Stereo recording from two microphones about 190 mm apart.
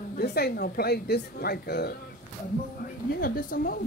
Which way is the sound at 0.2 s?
55° left (ahead or behind).